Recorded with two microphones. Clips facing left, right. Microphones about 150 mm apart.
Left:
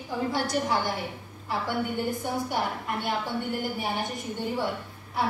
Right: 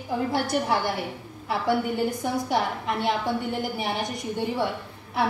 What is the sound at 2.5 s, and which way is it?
Speech, 90° right.